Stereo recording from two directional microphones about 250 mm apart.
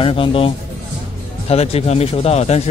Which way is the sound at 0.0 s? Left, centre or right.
Left.